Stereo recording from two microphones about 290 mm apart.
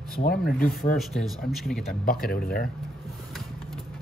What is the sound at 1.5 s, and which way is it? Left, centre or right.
Speech, centre.